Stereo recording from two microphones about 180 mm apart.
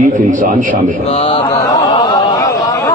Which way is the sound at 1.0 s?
30° left (ahead or behind).